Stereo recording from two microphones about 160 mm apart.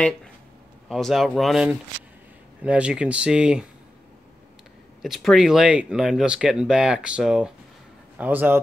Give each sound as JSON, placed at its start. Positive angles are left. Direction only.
{"t": 0.8, "sound": "speech", "side_deg": 0}
{"t": 5.0, "sound": "speech", "side_deg": 0}